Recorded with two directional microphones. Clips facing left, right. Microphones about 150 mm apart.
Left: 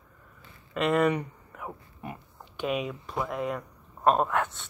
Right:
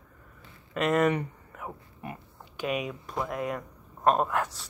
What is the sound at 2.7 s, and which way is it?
Speech, centre (ahead or behind).